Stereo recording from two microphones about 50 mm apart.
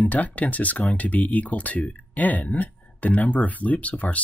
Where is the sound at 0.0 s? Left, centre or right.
Left.